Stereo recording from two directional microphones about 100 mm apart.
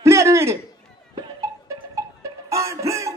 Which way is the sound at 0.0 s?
30° right (ahead or behind).